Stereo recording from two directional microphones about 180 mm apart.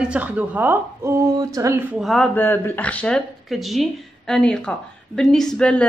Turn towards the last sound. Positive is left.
turn(degrees=5)  # may be behind; listen again after turning